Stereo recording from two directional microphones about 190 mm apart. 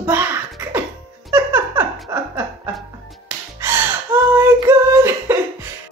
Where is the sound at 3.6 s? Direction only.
10° right (ahead or behind).